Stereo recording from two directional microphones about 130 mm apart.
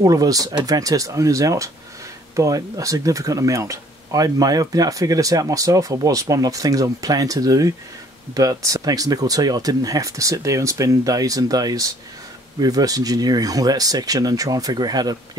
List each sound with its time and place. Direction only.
0.0 s speech: 30° right (ahead or behind)